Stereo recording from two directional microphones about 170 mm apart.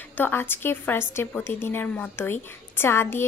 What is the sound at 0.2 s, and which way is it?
A woman's voice, 15° left (ahead or behind).